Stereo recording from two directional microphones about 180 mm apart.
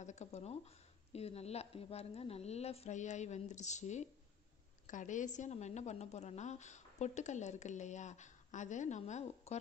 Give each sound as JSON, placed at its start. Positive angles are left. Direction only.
{"t": 0.0, "sound": "a woman's voice", "side_deg": 40}